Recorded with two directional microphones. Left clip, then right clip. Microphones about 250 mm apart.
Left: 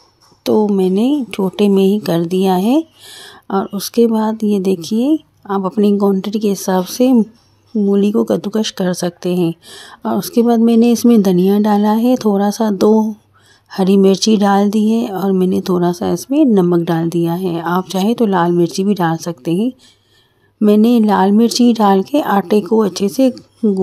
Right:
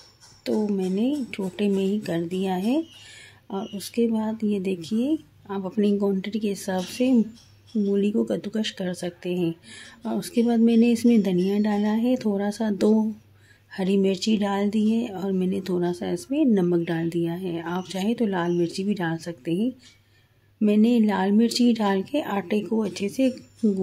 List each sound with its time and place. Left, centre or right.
0.4 s speech: left